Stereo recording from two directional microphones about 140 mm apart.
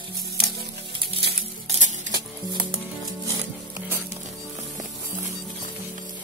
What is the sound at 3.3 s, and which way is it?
Music, 15° right (ahead or behind).